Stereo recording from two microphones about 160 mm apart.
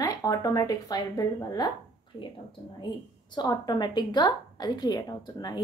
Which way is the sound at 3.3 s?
25° left (ahead or behind).